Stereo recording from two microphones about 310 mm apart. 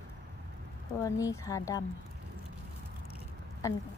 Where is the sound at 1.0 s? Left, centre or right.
Centre.